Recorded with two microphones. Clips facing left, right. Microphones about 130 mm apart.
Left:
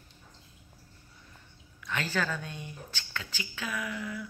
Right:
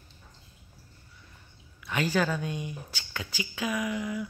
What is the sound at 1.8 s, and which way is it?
A woman's voice, 15° right (ahead or behind).